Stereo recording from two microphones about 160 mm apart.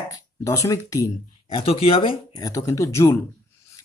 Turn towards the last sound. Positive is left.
turn(degrees=15)  # may be behind; listen again after turning